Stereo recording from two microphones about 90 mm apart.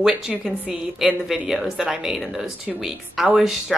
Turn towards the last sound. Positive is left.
turn(degrees=-5)  # may be behind; listen again after turning